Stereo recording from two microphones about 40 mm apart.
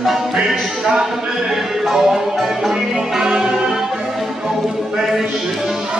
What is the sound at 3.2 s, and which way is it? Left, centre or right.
Music, centre.